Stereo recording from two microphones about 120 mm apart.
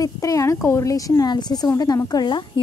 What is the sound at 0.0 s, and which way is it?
Speech, 25° left (ahead or behind).